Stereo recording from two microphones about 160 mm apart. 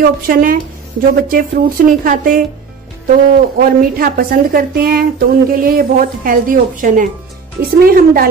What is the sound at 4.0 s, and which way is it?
Speech, 60° right (ahead or behind).